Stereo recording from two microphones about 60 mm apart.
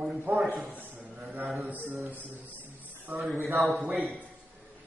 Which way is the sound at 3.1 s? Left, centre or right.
Right.